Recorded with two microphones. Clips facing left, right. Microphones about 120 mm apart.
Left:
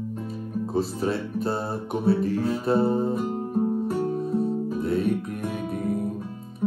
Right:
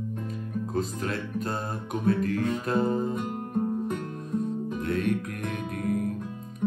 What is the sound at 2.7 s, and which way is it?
Guitar, 35° left (ahead or behind).